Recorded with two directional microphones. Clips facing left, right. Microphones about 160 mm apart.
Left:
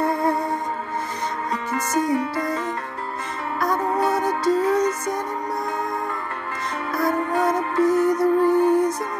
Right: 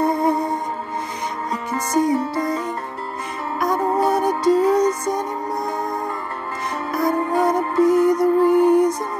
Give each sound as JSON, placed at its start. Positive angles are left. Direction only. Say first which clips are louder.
{"t": 0.0, "sound": "music", "louder": "right 3 dB", "side_deg": -15}
{"t": 2.0, "sound": "music", "louder": "right 3 dB", "side_deg": -15}
{"t": 6.9, "sound": "music", "louder": "right 2 dB", "side_deg": -15}